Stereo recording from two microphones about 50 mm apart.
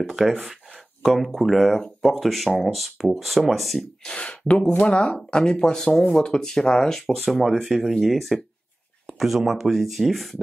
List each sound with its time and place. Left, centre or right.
0.1 s speech: centre
4.0 s speech: left
7.2 s speech: centre